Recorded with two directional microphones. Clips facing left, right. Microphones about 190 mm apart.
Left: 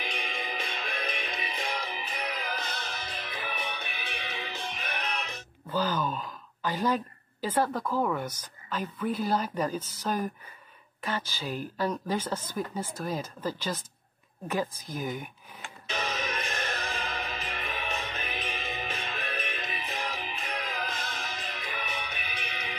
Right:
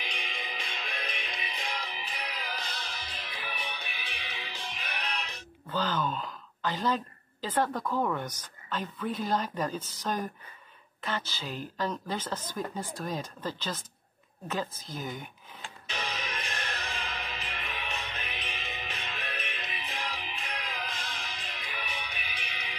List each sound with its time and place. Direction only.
0.0 s music: 50° left (ahead or behind)
5.7 s speech: 10° left (ahead or behind)
15.9 s music: 50° left (ahead or behind)